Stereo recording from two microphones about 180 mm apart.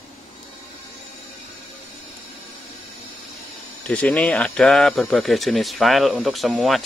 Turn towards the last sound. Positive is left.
turn(degrees=0)  # may be behind; listen again after turning